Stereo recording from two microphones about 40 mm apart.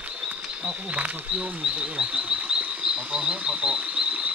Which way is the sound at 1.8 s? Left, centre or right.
Right.